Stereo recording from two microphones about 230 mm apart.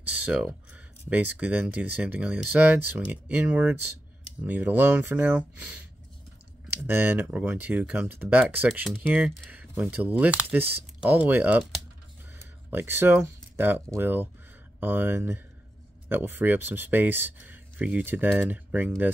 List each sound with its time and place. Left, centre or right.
0.1 s speech: centre
6.9 s speech: centre